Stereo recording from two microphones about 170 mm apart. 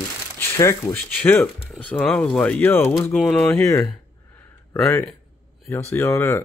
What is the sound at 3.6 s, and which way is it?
Speech, 20° left (ahead or behind).